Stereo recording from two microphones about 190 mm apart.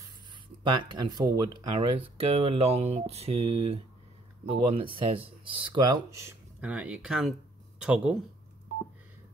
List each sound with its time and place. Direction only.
0.7 s speech: 25° right (ahead or behind); by 8.2 s 5° right (ahead or behind)